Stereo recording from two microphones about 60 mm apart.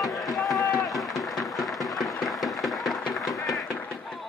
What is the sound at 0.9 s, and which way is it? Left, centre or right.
Run, centre.